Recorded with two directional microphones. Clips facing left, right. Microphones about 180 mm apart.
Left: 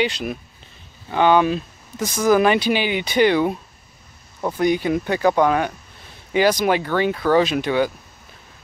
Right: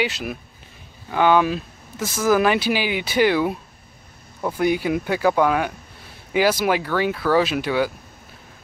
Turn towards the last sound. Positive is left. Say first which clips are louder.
# left 2 dB
turn(degrees=-5)  # may be behind; listen again after turning